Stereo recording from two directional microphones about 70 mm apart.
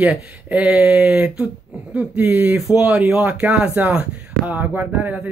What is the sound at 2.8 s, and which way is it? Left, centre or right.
Speech, centre.